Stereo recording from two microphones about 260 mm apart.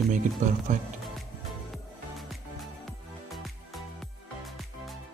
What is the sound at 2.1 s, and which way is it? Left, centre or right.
Music, centre.